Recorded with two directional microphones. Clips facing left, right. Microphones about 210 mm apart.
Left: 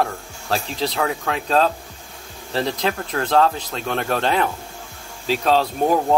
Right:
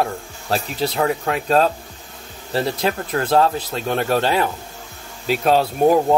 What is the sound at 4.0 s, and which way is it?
Speech, 35° right (ahead or behind).